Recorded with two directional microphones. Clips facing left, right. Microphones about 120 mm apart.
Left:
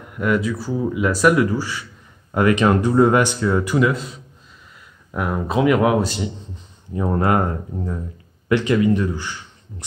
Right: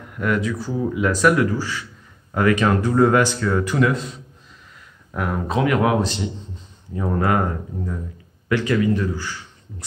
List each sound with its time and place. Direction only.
0.2 s a man's voice: 5° left (ahead or behind)
5.1 s speech: 10° left (ahead or behind)
7.0 s a man's voice: 25° left (ahead or behind)
8.5 s speech: 20° left (ahead or behind)